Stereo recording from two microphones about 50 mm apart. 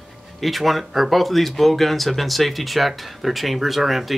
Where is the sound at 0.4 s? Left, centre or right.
Centre.